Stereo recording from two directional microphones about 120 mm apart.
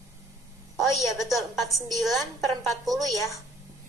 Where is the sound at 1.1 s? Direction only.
Centre (ahead or behind).